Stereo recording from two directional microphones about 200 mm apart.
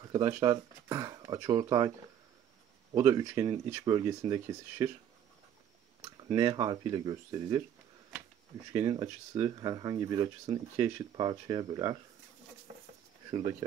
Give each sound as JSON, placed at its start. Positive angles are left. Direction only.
{"t": 0.4, "sound": "speech", "side_deg": -20}
{"t": 3.0, "sound": "speech", "side_deg": -15}
{"t": 6.1, "sound": "speech", "side_deg": -20}
{"t": 8.7, "sound": "speech", "side_deg": -15}
{"t": 13.3, "sound": "speech", "side_deg": -20}